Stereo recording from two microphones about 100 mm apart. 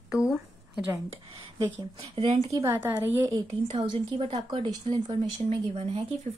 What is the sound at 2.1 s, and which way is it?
Speech, 80° right.